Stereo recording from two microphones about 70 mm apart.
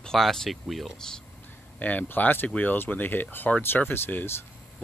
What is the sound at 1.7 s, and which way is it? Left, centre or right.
Speech, left.